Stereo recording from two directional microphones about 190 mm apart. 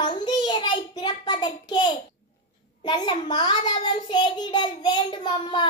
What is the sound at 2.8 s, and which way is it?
A child's voice, 25° left (ahead or behind).